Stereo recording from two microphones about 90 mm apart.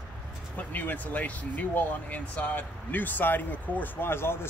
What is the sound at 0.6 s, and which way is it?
Speech, 20° left (ahead or behind).